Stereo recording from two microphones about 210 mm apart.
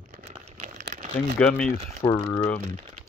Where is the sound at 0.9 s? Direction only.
35° right (ahead or behind).